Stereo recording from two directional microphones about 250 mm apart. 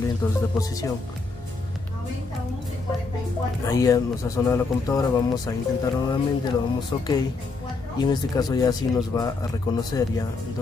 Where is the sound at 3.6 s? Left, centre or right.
Centre.